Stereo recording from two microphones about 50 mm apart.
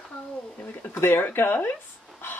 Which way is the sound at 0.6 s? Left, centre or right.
Left.